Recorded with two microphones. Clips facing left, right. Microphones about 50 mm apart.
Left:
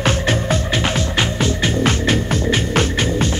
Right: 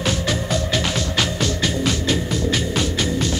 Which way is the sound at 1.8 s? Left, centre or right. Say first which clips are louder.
Left 4 dB; left.